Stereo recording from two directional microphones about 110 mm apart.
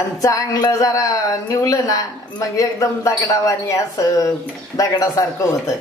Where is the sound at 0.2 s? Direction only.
30° left (ahead or behind).